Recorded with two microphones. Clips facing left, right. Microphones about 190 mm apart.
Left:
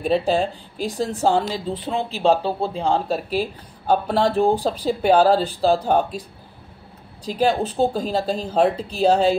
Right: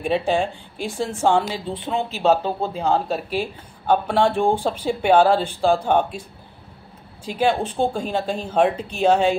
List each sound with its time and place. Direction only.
0.0 s speech: 35° left (ahead or behind)
7.2 s speech: 40° left (ahead or behind)